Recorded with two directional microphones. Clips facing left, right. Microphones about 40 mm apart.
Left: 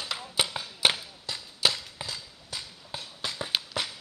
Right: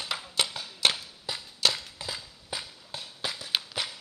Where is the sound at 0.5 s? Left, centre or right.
Centre.